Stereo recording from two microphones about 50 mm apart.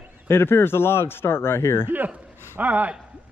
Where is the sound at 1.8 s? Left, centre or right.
Right.